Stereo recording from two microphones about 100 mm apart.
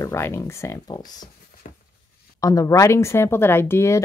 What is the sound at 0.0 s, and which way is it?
Speech, 25° left (ahead or behind).